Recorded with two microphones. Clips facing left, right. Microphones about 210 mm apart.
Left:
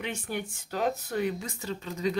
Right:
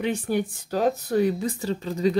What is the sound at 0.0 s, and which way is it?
Speech, 35° right (ahead or behind).